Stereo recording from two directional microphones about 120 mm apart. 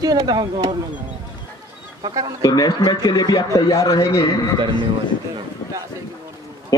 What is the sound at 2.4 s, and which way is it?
A man's voice, 35° left (ahead or behind).